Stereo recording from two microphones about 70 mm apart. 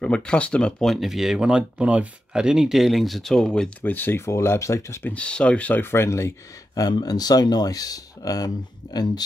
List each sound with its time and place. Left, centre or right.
0.0 s speech: centre
0.8 s speech: centre
3.8 s speech: left
5.0 s speech: centre; by 6.3 s left
6.7 s speech: left
8.9 s speech: left